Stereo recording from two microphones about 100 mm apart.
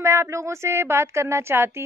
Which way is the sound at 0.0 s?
30° right (ahead or behind).